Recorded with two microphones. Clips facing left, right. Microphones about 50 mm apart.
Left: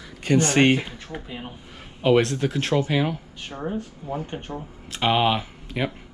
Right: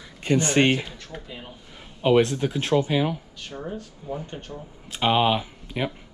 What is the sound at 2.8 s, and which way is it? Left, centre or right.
Speech, left.